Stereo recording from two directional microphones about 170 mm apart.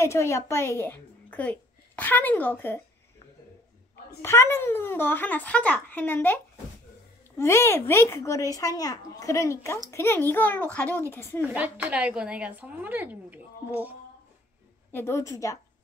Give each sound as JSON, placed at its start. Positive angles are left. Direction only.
{"t": 0.0, "sound": "a woman's voice", "side_deg": 15}
{"t": 4.2, "sound": "speech", "side_deg": 15}
{"t": 11.4, "sound": "a woman's voice", "side_deg": -5}
{"t": 14.9, "sound": "speech", "side_deg": 15}